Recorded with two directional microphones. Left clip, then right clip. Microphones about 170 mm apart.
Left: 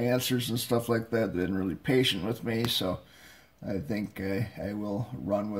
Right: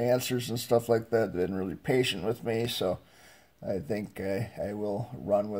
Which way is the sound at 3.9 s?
20° right (ahead or behind).